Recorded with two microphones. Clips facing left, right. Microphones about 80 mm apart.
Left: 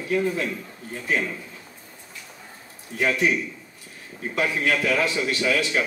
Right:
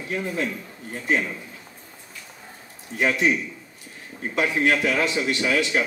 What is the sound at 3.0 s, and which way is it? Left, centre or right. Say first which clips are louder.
Speech: right 1 dB; right.